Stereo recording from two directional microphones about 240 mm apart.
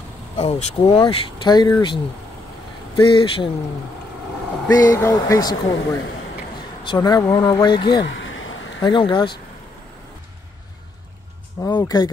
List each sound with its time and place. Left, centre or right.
0.4 s speech: left
3.0 s speech: left
4.6 s speech: centre
8.1 s a sound: left
8.8 s speech: centre
11.6 s speech: centre